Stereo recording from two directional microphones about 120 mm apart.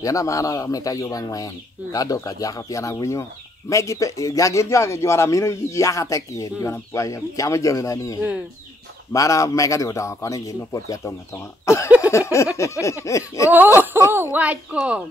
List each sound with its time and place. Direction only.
0.0 s speech: 30° left (ahead or behind)
12.1 s a sound: 25° left (ahead or behind)
12.8 s speech: 25° left (ahead or behind)
13.9 s a woman's voice: 20° right (ahead or behind)